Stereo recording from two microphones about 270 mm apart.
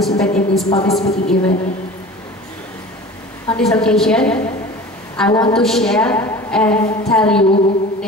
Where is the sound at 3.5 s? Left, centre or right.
Centre.